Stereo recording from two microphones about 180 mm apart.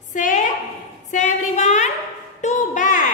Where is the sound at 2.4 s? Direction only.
45° left (ahead or behind).